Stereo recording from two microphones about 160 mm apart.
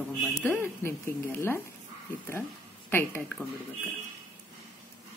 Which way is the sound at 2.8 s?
15° left (ahead or behind).